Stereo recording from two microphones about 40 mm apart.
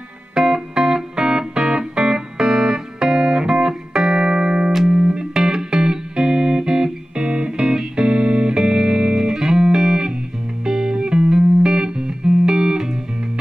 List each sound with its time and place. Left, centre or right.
0.4 s music: centre
5.3 s music: centre